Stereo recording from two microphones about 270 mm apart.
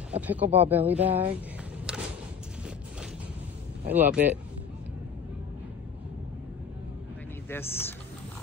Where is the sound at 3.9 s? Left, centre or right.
Centre.